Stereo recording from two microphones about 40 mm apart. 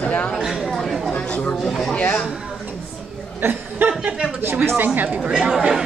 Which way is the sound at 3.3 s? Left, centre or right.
Right.